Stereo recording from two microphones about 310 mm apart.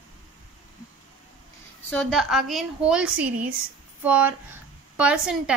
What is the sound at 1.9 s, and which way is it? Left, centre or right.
A woman's voice, centre.